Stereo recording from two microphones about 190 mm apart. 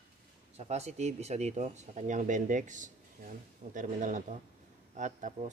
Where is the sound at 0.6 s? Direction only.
35° right (ahead or behind).